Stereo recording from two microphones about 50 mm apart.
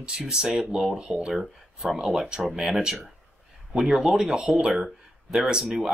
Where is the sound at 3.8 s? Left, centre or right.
Centre.